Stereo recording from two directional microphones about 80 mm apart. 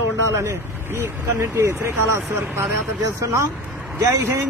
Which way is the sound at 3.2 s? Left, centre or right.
Right.